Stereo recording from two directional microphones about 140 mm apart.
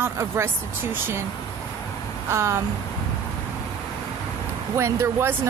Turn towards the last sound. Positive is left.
turn(degrees=-20)  # may be behind; listen again after turning